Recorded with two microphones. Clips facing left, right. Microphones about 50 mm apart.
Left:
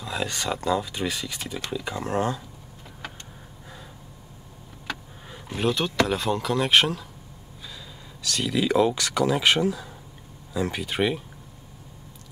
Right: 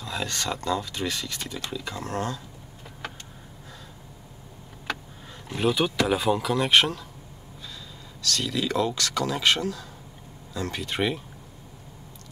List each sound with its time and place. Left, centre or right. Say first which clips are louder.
0.0 s speech: left 2 dB; centre
5.3 s speech: even; centre
8.2 s speech: left 2 dB; centre